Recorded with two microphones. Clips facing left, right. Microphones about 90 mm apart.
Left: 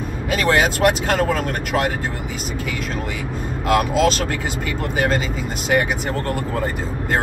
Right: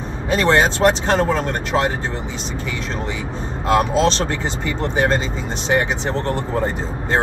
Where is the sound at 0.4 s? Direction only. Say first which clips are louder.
Right 2 dB; 30° right (ahead or behind).